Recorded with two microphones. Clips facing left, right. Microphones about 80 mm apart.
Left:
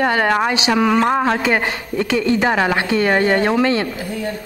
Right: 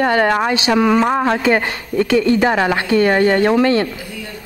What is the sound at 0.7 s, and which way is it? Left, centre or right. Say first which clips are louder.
Speech: right 2 dB; centre.